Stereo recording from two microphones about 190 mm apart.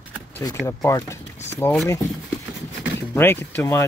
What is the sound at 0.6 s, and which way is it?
Speech, 15° left (ahead or behind).